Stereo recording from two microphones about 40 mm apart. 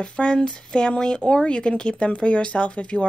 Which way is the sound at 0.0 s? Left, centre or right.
Left.